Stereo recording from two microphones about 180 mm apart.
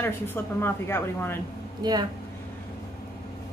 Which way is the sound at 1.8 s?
25° right (ahead or behind).